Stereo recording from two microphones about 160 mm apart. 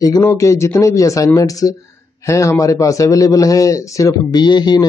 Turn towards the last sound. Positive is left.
turn(degrees=25)  # may be behind; listen again after turning